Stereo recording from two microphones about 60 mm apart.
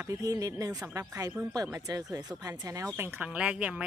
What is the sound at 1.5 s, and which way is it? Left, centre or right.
Speech, right.